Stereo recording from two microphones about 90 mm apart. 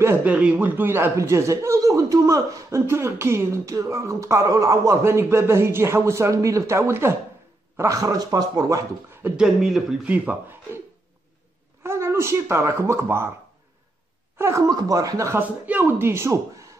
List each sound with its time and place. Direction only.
0.2 s a man's voice: 15° right (ahead or behind); by 8.8 s 40° right (ahead or behind)
9.4 s speech: centre (ahead or behind)
10.0 s speech: 15° right (ahead or behind)
11.8 s speech: 30° right (ahead or behind)
14.4 s a man's voice: 35° right (ahead or behind)
14.7 s speech: 45° right (ahead or behind)
15.3 s speech: 20° right (ahead or behind)